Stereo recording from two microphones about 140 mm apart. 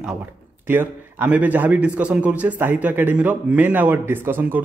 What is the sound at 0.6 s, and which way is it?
A man's voice, 15° right (ahead or behind).